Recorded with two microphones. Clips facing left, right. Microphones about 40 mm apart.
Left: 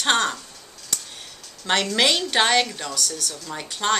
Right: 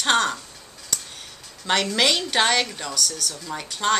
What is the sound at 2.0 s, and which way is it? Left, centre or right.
Speech, centre.